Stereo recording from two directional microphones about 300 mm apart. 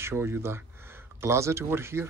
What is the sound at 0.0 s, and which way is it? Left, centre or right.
Speech, centre.